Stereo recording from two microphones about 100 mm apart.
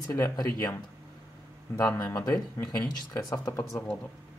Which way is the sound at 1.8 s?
25° left (ahead or behind).